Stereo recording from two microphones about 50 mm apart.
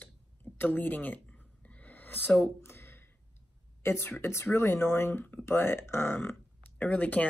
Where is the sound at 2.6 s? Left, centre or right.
Left.